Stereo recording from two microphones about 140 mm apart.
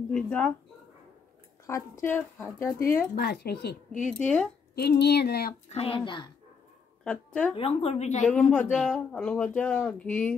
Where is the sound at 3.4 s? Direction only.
90° left.